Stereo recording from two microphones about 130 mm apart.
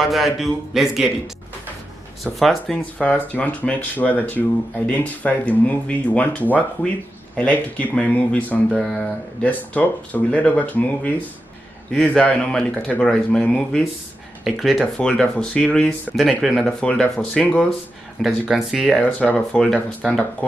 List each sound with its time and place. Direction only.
0.0 s speech: centre (ahead or behind)
2.2 s speech: 5° left (ahead or behind)
18.2 s speech: 5° right (ahead or behind)
19.1 s speech: 10° left (ahead or behind)